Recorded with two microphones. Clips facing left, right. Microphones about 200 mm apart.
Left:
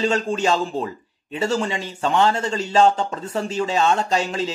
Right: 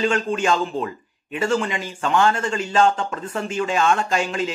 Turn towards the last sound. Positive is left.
turn(degrees=30)  # may be behind; listen again after turning